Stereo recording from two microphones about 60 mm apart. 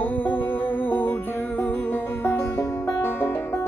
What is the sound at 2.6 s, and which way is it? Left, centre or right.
Music, left.